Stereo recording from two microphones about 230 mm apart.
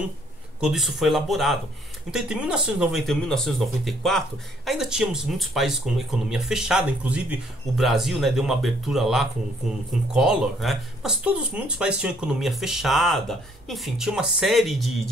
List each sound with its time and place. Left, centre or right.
0.6 s speech: centre